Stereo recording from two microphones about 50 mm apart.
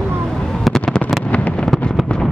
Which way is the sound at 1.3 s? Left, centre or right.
Left.